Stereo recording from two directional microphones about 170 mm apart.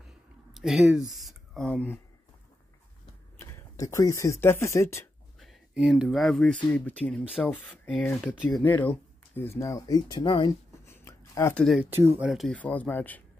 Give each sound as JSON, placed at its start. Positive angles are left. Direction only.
{"t": 0.5, "sound": "speech", "side_deg": 0}
{"t": 3.3, "sound": "speech", "side_deg": 20}
{"t": 5.4, "sound": "a sound", "side_deg": 0}
{"t": 6.0, "sound": "speech", "side_deg": 0}
{"t": 10.9, "sound": "a sound", "side_deg": 15}
{"t": 11.5, "sound": "speech", "side_deg": 0}
{"t": 11.8, "sound": "speech", "side_deg": -15}
{"t": 12.2, "sound": "speech", "side_deg": 0}